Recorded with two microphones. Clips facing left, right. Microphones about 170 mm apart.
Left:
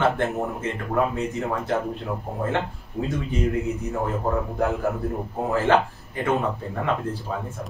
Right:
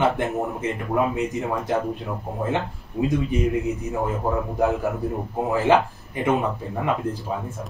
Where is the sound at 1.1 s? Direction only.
15° right (ahead or behind).